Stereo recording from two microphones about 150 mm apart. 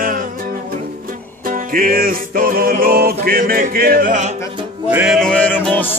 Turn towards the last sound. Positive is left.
turn(degrees=10)  # may be behind; listen again after turning